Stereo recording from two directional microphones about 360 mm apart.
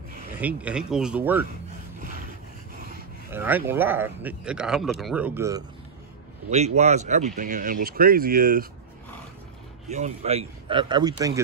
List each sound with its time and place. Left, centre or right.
0.4 s speech: centre
3.3 s speech: centre
6.5 s speech: centre
9.8 s a man's voice: centre